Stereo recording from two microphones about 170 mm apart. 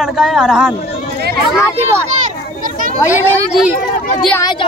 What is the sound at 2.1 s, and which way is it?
Children playing, 50° right (ahead or behind).